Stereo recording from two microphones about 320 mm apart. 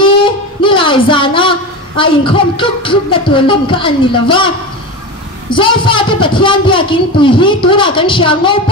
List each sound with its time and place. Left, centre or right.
0.0 s speech: centre
5.5 s speech: centre